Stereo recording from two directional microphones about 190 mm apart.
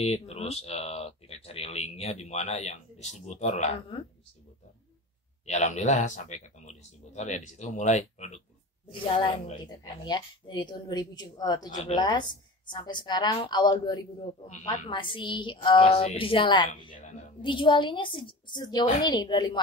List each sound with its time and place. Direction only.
0.0 s speech: 35° left (ahead or behind)
5.4 s speech: 35° left (ahead or behind)
9.0 s a woman's voice: 25° left (ahead or behind)
16.9 s speech: 40° left (ahead or behind)
17.4 s a woman's voice: 25° left (ahead or behind)